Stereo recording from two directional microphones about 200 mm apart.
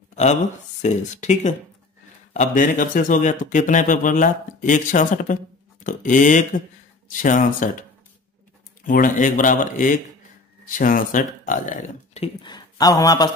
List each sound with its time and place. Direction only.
0.1 s a sound: 35° left (ahead or behind)
0.8 s speech: 35° left (ahead or behind)
8.8 s speech: 40° left (ahead or behind); by 13.3 s 20° left (ahead or behind)